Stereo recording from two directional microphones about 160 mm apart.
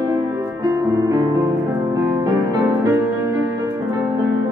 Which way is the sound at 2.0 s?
20° right (ahead or behind).